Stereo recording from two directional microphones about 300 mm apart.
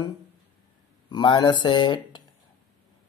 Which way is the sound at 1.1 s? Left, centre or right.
Centre.